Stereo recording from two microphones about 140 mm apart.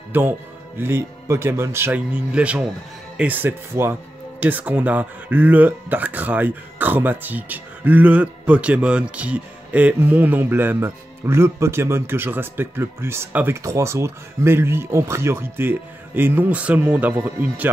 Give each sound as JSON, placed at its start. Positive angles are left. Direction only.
{"t": 0.1, "sound": "speech", "side_deg": -15}